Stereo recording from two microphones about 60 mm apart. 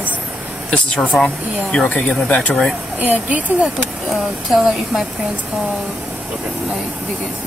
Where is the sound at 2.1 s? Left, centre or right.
Left.